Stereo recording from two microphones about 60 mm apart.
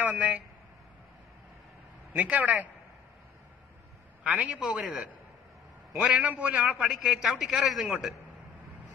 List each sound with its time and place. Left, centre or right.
0.0 s speech: right
2.1 s a man's voice: right
4.2 s a man's voice: right
4.6 s a man's voice: centre
5.9 s a man's voice: right
6.7 s a man's voice: centre